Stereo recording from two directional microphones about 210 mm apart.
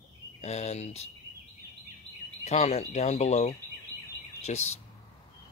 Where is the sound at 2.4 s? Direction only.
30° left (ahead or behind).